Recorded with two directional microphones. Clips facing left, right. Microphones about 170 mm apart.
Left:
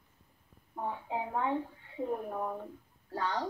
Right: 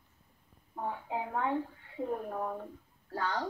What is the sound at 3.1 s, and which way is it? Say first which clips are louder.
Speech: even; 20° left (ahead or behind).